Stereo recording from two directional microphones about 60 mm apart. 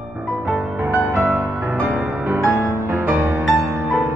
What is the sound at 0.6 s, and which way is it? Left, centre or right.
Music, right.